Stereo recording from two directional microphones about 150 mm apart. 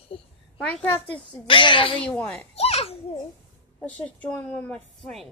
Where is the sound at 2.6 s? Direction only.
45° left (ahead or behind).